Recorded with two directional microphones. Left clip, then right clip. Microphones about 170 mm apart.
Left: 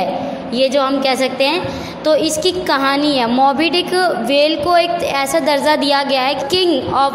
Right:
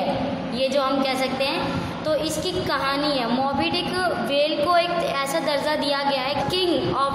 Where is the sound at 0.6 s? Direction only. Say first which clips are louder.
Left 7 dB; 35° left (ahead or behind).